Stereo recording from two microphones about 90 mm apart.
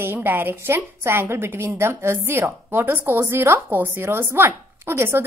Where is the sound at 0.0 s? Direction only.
25° right (ahead or behind).